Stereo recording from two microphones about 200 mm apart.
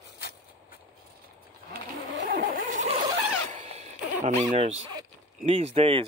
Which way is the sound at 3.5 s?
35° right (ahead or behind).